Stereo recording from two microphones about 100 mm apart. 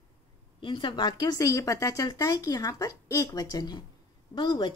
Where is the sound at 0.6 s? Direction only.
55° left (ahead or behind).